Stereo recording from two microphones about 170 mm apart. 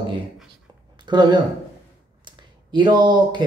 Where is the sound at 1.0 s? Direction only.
25° right (ahead or behind).